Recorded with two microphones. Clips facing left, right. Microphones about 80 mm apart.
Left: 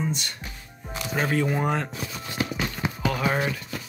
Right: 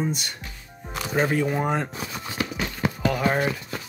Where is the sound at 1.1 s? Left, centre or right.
Centre.